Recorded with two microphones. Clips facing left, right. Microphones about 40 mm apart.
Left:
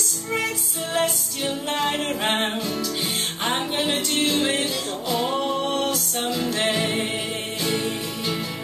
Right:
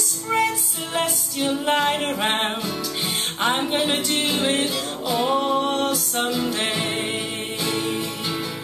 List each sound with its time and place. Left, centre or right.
0.9 s music: centre
5.5 s music: right
6.3 s music: centre